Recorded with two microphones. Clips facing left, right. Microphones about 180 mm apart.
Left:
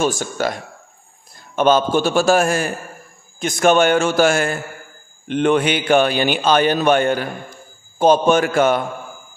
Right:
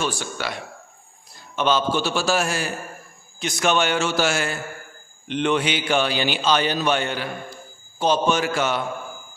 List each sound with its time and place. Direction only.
0.0 s a man's voice: 45° left (ahead or behind)